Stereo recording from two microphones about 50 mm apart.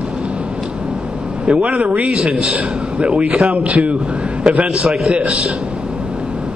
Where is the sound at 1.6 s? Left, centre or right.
Right.